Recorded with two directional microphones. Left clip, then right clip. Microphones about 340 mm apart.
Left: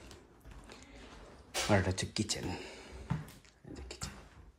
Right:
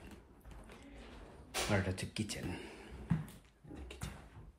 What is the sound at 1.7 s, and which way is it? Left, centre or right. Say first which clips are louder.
Speech: left 5 dB; centre.